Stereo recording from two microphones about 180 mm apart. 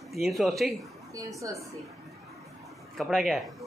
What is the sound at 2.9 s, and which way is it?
Speech, centre (ahead or behind).